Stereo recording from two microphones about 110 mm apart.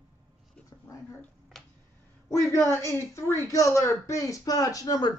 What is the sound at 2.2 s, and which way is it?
A woman's voice, 30° left (ahead or behind).